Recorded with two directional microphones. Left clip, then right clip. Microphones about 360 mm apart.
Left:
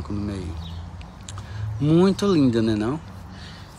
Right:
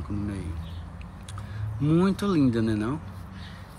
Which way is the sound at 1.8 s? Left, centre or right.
Centre.